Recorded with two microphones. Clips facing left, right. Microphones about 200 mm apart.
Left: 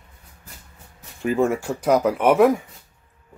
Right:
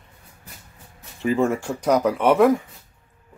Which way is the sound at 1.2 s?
5° left (ahead or behind).